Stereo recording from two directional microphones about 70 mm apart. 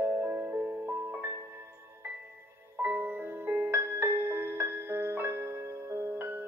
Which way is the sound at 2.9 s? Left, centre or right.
Right.